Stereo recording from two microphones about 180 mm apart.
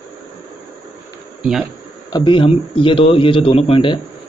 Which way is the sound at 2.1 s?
30° left (ahead or behind).